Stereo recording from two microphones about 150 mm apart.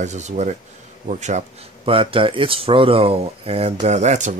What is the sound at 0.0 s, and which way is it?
Speech, 50° right (ahead or behind).